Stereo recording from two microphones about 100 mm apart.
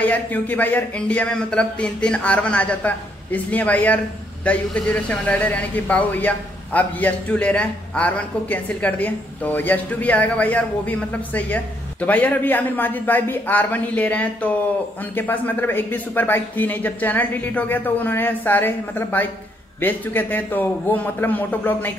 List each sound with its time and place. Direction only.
0.1 s a man's voice: 15° left (ahead or behind)